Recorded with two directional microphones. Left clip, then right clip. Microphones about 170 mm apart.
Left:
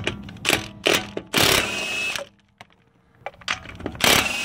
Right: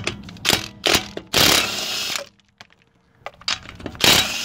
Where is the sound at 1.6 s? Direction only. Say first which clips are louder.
Right 1 dB; centre (ahead or behind).